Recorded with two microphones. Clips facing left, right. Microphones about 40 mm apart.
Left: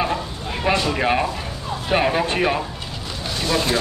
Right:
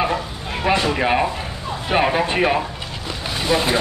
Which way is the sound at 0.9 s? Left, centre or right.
Centre.